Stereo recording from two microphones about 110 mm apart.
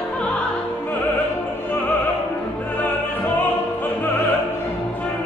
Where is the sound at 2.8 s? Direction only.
15° left (ahead or behind).